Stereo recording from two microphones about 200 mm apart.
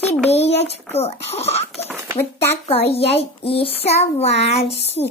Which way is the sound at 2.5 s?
30° left (ahead or behind).